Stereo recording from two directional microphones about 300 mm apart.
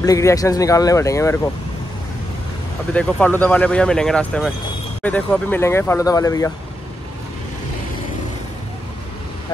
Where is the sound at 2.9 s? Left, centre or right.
Centre.